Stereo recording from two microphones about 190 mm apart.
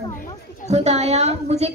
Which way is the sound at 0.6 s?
35° right (ahead or behind).